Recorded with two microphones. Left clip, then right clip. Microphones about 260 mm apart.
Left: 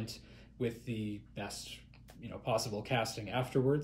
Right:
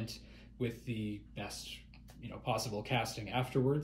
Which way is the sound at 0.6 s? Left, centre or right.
Centre.